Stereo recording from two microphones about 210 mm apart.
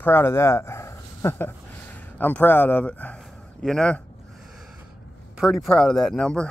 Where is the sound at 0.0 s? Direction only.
10° left (ahead or behind).